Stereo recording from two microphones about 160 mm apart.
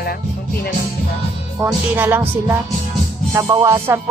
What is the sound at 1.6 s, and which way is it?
Speech, 10° right (ahead or behind).